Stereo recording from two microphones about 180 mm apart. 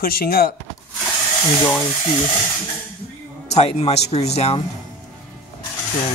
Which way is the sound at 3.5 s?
35° left (ahead or behind).